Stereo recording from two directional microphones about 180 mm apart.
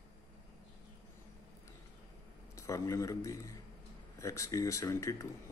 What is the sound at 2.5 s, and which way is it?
Speech, 15° left (ahead or behind).